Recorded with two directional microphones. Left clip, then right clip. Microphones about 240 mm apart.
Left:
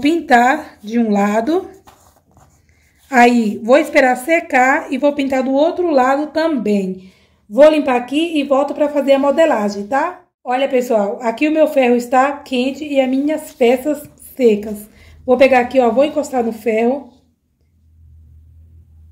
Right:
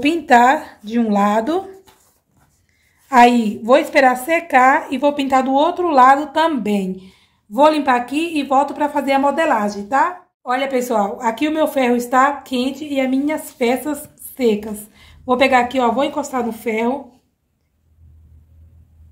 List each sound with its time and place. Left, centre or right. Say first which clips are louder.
0.0 s a woman's voice: even; centre
3.2 s a woman's voice: even; right
3.7 s a woman's voice: left 1 dB; centre
4.2 s a woman's voice: left 3 dB; right
4.5 s a woman's voice: right 2 dB; centre
4.7 s a woman's voice: even; right
5.0 s a woman's voice: even; centre
10.4 s a woman's voice: left 3 dB; right
10.8 s a woman's voice: left 2 dB; centre
11.6 s a woman's voice: left 4 dB; right
13.6 s a woman's voice: left 7 dB; centre